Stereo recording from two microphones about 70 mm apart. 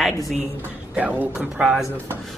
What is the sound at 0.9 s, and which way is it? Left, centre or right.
Speech, right.